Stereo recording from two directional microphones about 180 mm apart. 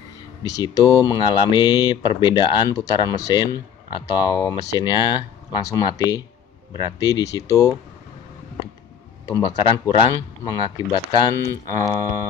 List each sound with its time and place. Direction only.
0.6 s speech: 20° left (ahead or behind)
9.3 s speech: 25° left (ahead or behind)